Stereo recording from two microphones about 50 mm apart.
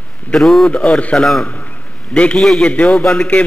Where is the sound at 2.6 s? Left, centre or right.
Left.